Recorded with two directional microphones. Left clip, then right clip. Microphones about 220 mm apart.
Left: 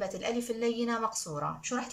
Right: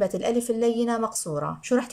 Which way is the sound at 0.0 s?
30° right (ahead or behind).